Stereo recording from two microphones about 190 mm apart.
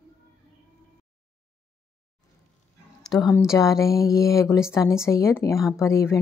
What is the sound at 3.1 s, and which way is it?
A woman's voice, 25° left (ahead or behind).